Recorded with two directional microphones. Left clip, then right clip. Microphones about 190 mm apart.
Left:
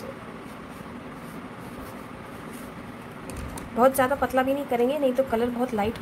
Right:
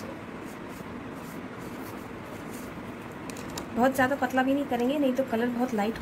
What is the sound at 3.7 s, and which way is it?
A woman's voice, 25° left (ahead or behind).